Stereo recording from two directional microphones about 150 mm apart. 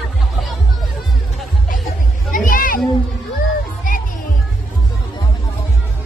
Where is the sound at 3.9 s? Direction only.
65° left (ahead or behind).